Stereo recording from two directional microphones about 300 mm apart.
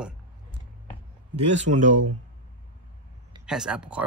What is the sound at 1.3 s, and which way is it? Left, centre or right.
Speech, right.